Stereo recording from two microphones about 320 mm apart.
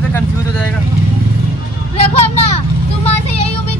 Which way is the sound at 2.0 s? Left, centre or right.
Centre.